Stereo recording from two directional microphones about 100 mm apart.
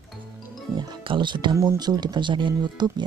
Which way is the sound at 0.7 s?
50° right (ahead or behind).